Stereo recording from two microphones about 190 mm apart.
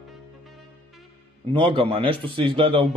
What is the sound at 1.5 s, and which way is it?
Speech, 25° right (ahead or behind).